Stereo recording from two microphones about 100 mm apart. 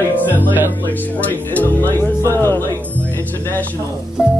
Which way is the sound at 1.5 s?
15° left (ahead or behind).